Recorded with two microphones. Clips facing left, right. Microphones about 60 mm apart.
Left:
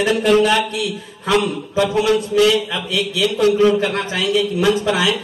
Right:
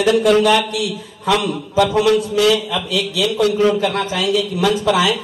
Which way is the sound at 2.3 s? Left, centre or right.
Left.